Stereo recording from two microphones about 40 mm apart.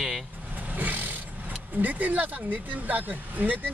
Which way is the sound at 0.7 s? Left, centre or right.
Right.